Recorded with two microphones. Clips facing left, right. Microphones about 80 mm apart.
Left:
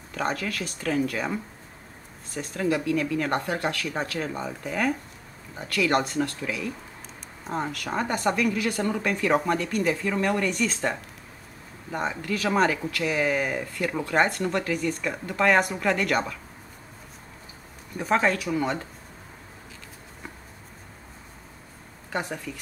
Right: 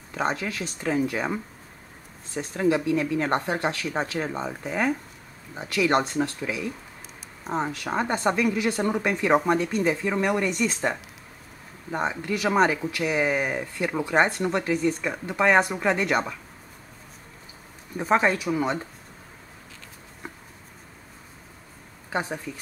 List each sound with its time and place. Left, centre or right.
0.1 s speech: right
17.9 s speech: centre